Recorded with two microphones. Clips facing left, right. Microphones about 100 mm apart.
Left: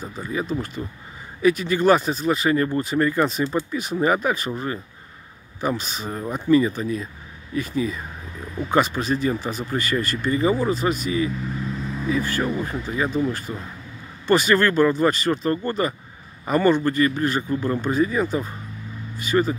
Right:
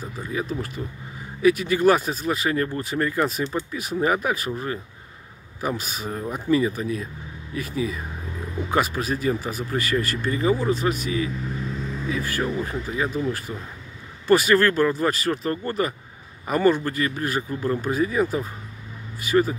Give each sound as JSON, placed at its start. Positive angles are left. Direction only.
{"t": 0.3, "sound": "speech", "side_deg": -5}
{"t": 5.6, "sound": "speech", "side_deg": -5}